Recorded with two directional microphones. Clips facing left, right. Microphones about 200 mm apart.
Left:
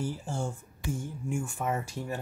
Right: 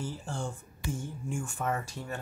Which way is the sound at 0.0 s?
10° left (ahead or behind).